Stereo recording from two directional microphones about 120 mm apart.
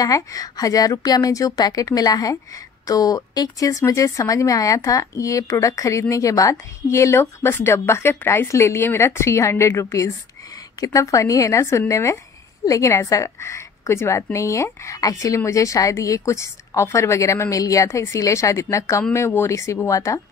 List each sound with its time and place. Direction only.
0.0 s a woman's voice: 30° left (ahead or behind)